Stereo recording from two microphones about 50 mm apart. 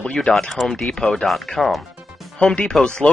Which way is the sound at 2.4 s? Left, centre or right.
Centre.